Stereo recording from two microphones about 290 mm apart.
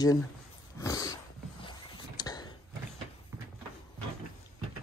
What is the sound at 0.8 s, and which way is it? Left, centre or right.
Dog, centre.